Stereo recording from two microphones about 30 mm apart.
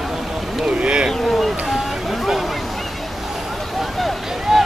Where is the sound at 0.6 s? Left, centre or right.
Right.